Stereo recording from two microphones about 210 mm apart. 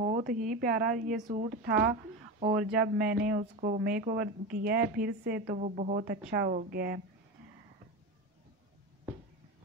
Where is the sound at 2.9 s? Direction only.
45° right (ahead or behind).